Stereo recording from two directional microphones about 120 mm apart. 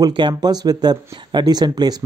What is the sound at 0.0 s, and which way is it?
Speech, 40° right (ahead or behind).